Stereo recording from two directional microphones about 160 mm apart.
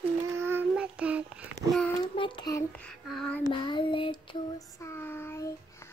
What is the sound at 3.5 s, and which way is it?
Child singing, 30° left (ahead or behind).